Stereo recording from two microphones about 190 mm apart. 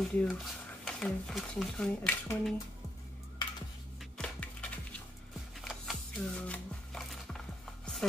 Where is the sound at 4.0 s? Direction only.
5° left (ahead or behind).